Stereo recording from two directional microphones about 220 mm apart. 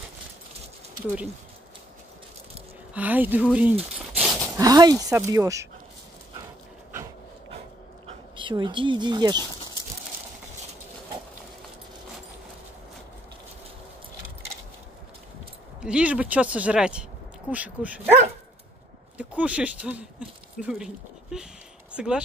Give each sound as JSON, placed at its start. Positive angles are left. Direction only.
{"t": 2.9, "sound": "speech", "side_deg": -5}
{"t": 4.2, "sound": "a sound", "side_deg": 0}
{"t": 4.6, "sound": "speech", "side_deg": -15}
{"t": 8.4, "sound": "a woman's voice", "side_deg": -20}
{"t": 15.8, "sound": "speech", "side_deg": -5}